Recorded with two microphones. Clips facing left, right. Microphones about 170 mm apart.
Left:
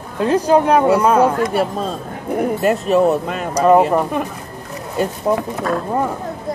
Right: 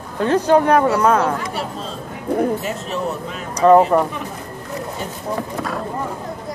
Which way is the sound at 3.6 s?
10° left (ahead or behind).